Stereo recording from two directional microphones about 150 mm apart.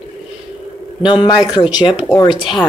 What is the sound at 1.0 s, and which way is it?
A man's voice, 30° left (ahead or behind).